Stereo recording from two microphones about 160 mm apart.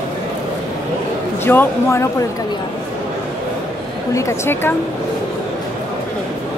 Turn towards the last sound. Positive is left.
turn(degrees=15)  # may be behind; listen again after turning